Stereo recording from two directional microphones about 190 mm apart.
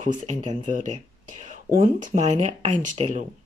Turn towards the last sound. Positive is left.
turn(degrees=-35)  # may be behind; listen again after turning